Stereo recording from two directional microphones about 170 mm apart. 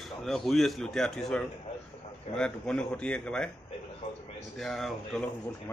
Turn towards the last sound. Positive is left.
turn(degrees=0)  # may be behind; listen again after turning